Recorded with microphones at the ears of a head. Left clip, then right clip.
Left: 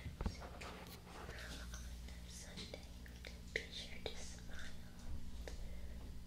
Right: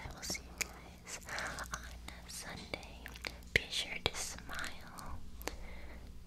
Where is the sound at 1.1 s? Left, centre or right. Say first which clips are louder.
Right 12 dB; right.